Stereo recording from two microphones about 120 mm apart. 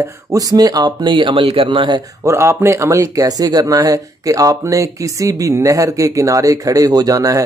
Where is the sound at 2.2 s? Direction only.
20° right (ahead or behind).